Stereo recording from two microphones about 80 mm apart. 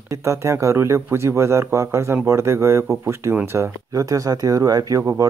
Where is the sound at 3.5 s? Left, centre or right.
Right.